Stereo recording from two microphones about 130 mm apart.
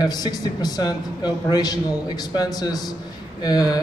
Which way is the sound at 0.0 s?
30° left (ahead or behind).